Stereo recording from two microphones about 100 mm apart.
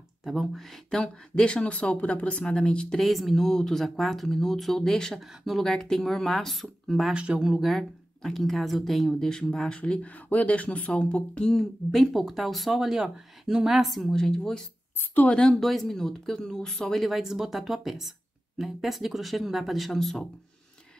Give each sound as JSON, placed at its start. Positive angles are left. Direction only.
{"t": 0.2, "sound": "speech", "side_deg": 0}